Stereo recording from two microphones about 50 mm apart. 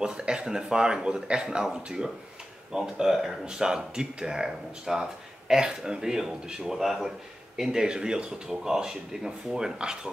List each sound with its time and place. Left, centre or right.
0.0 s speech: centre